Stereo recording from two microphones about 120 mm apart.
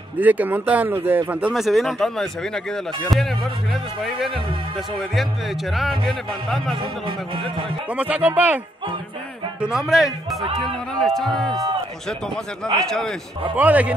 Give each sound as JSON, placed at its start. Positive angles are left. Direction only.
{"t": 0.2, "sound": "speech", "side_deg": -15}
{"t": 5.7, "sound": "speech", "side_deg": 0}
{"t": 7.1, "sound": "speech", "side_deg": -45}
{"t": 7.9, "sound": "speech", "side_deg": -10}
{"t": 9.6, "sound": "speech", "side_deg": -5}
{"t": 12.8, "sound": "speech", "side_deg": 5}
{"t": 13.6, "sound": "speech", "side_deg": -15}